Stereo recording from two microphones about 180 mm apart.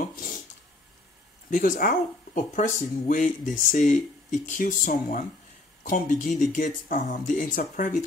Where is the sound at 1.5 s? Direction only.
50° left (ahead or behind).